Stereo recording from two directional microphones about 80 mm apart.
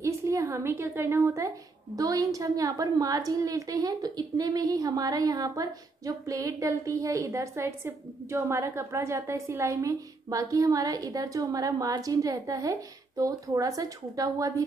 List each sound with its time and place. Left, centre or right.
0.0 s a woman's voice: right
2.0 s a woman's voice: right